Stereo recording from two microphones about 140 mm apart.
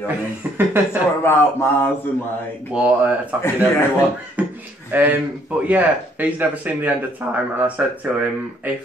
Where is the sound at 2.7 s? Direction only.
10° right (ahead or behind).